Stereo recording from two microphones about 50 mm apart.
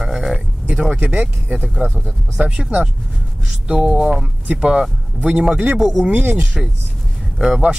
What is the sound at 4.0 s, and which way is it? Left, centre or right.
Speech, centre.